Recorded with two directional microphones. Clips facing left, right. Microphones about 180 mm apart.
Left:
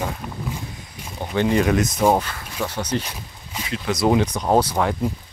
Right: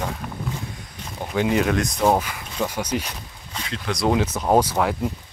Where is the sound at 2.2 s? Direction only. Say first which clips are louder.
Right 1 dB; 10° right (ahead or behind).